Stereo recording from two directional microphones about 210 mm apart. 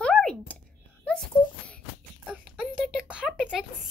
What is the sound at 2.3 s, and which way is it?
A child's voice, 5° right (ahead or behind).